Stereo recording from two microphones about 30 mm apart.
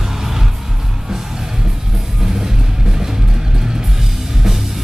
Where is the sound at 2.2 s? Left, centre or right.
Centre.